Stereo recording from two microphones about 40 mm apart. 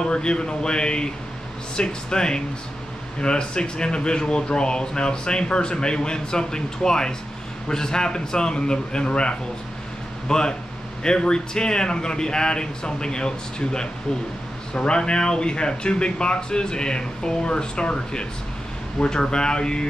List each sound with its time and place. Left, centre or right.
0.0 s speech: left